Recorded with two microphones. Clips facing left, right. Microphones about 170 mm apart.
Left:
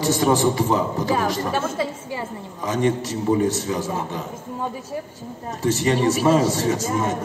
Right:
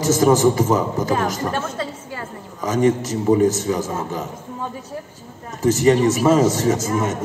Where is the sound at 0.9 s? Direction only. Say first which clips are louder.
Right 1 dB; centre (ahead or behind).